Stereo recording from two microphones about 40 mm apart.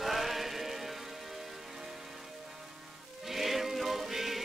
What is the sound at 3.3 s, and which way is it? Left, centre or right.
Music, centre.